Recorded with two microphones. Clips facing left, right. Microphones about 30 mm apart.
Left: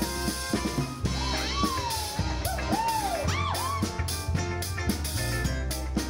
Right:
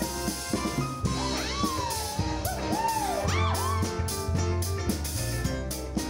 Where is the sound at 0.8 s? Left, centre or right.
Centre.